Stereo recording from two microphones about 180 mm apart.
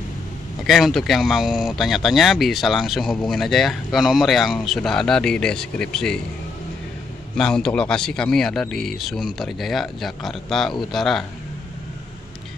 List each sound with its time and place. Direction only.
0.7 s speech: centre (ahead or behind)
7.3 s speech: 5° left (ahead or behind)